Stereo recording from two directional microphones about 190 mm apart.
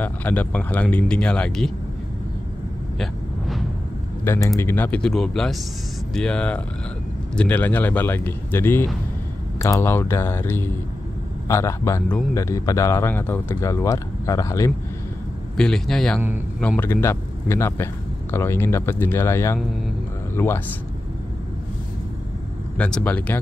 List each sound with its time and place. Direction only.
0.0 s speech: 10° left (ahead or behind)
3.0 s vehicle: centre (ahead or behind)
4.2 s speech: 15° left (ahead or behind)
15.5 s a man's voice: 5° left (ahead or behind)
22.8 s speech: 5° left (ahead or behind)